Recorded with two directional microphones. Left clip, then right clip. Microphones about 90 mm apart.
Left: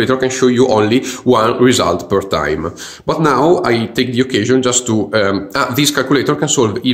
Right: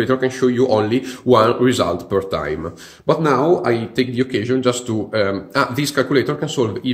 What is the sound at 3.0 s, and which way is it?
Speech, 35° left (ahead or behind).